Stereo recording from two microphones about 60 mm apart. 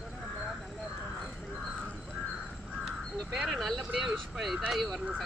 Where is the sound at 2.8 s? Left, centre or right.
Centre.